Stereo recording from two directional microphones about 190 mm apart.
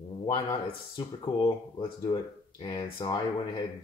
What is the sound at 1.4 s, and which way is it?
Speech, 20° left (ahead or behind).